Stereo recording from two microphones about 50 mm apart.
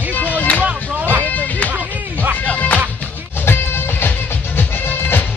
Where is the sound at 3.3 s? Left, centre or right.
Left.